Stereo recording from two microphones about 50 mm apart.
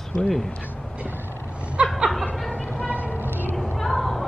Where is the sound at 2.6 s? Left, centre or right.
Left.